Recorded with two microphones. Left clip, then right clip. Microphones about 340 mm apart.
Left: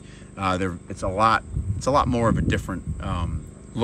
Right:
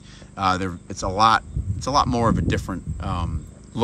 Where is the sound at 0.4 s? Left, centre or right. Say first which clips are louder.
Right 3 dB; centre.